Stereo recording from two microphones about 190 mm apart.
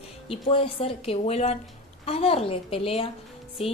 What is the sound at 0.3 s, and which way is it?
Speech, 30° left (ahead or behind).